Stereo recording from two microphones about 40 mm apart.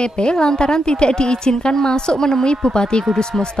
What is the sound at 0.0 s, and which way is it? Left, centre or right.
A woman's voice, left.